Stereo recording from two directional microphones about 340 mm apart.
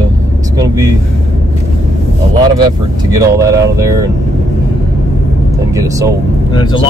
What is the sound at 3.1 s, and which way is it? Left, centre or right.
Speech, centre.